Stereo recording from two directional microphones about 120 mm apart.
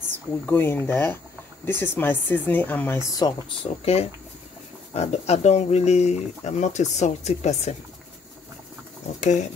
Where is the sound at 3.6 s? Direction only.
55° left (ahead or behind).